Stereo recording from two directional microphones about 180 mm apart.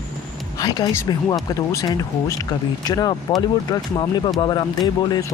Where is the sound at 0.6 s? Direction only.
20° left (ahead or behind).